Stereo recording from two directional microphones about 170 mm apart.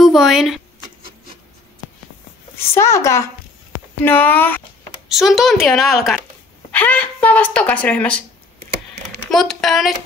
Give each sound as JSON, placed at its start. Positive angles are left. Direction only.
{"t": 0.0, "sound": "speech", "side_deg": 0}
{"t": 2.5, "sound": "speech", "side_deg": 15}
{"t": 5.1, "sound": "a woman's voice", "side_deg": 0}
{"t": 9.3, "sound": "a woman's voice", "side_deg": 0}